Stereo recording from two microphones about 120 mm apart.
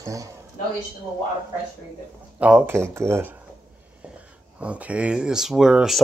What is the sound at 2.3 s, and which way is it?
Speech, 15° right (ahead or behind).